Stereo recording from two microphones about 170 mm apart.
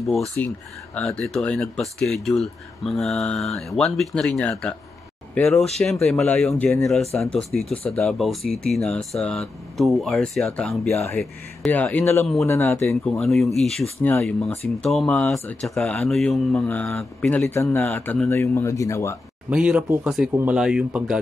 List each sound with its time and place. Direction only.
0.0 s a man's voice: centre (ahead or behind)
13.1 s a man's voice: centre (ahead or behind)
15.6 s a man's voice: centre (ahead or behind); by 19.1 s 20° left (ahead or behind)
19.5 s speech: 5° right (ahead or behind)